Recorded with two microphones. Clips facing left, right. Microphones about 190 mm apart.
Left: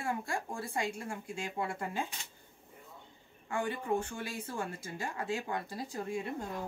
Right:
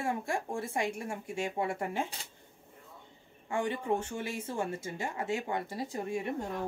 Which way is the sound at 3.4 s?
25° right (ahead or behind).